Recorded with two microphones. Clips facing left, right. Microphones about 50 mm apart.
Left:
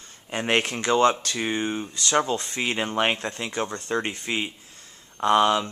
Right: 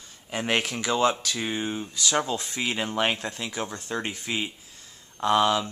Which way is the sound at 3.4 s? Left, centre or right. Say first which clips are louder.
Left 6 dB; centre.